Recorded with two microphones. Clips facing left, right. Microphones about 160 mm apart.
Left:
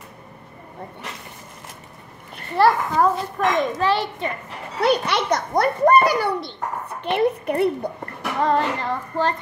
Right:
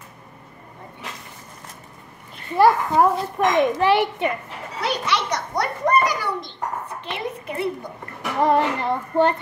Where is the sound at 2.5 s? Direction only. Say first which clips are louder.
Right 1 dB; 15° right (ahead or behind).